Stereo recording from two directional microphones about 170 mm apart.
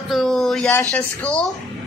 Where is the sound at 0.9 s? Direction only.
10° left (ahead or behind).